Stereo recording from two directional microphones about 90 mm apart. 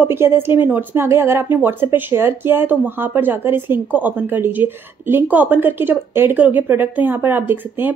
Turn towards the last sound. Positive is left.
turn(degrees=-20)  # may be behind; listen again after turning